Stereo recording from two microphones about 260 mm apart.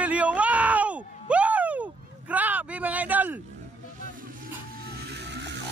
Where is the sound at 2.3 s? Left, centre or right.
Centre.